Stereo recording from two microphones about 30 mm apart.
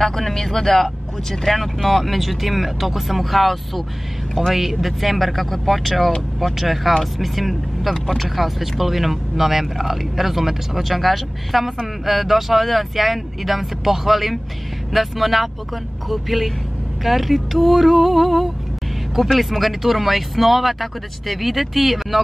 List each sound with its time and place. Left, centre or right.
0.0 s speech: centre
4.4 s speech: centre
4.8 s speech: centre